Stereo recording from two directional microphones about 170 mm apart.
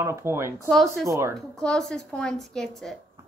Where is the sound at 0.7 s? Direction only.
Centre (ahead or behind).